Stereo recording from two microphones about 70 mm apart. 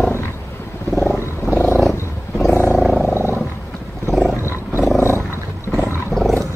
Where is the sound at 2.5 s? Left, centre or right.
Left.